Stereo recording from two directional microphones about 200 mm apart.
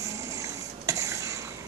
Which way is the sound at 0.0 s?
15° right (ahead or behind).